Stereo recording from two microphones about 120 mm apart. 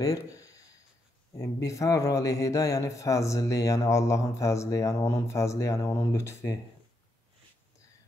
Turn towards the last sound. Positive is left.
turn(degrees=25)  # may be behind; listen again after turning